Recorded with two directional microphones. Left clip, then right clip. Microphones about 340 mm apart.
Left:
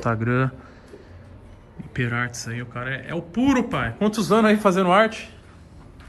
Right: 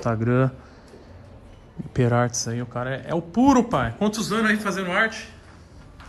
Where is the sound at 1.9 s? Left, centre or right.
Centre.